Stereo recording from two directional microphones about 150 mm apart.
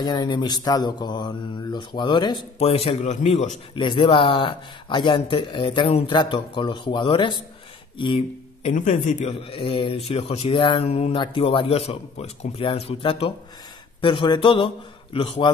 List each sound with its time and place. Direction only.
0.0 s speech: 25° left (ahead or behind); by 3.5 s 50° left (ahead or behind)
3.7 s speech: 35° left (ahead or behind)
8.6 s a man's voice: 55° left (ahead or behind)
9.3 s speech: 40° left (ahead or behind)